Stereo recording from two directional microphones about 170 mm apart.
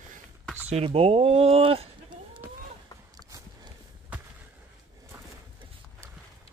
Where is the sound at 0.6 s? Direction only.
35° right (ahead or behind).